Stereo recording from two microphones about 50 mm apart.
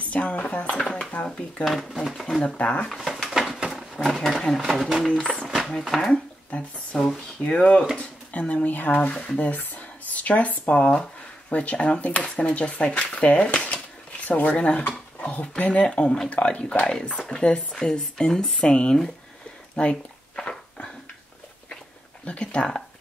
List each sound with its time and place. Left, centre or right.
0.1 s a sound: left
1.6 s speech: centre
2.5 s speech: left
3.3 s a sound: centre
3.9 s speech: centre
4.6 s speech: centre
5.0 s speech: centre
6.1 s speech: centre
7.4 s speech: left
19.7 s a sound: left
22.2 s speech: left